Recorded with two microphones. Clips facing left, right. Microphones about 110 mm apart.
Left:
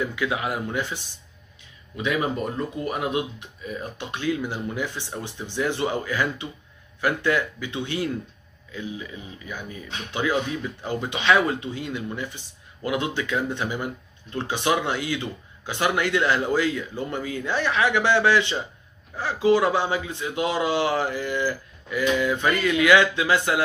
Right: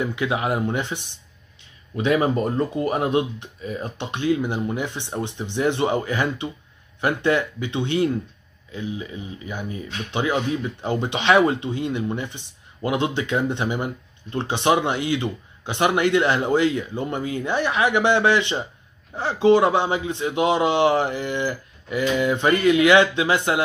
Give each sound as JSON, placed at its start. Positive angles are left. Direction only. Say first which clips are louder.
{"t": 0.0, "sound": "a man's voice", "louder": "right 3 dB", "side_deg": -25}